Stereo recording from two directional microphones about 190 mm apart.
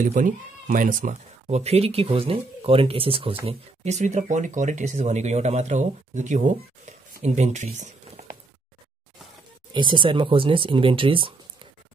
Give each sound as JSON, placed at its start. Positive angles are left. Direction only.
{"t": 0.0, "sound": "speech", "side_deg": -45}
{"t": 9.8, "sound": "speech", "side_deg": -25}